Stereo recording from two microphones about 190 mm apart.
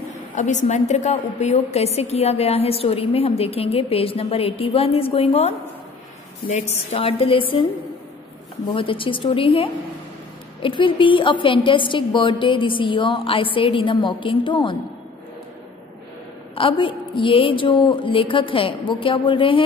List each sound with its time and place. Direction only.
0.3 s a woman's voice: 40° left (ahead or behind)
8.7 s a woman's voice: 30° left (ahead or behind)
16.5 s a woman's voice: 25° left (ahead or behind)